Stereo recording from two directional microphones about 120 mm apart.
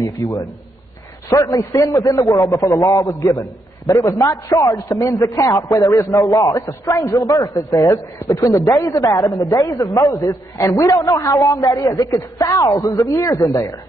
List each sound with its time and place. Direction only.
1.3 s a man's voice: 30° left (ahead or behind)